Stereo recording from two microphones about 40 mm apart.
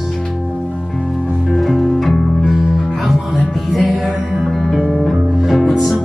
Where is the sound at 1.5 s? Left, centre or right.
Centre.